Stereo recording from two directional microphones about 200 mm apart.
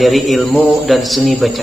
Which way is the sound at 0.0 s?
Centre (ahead or behind).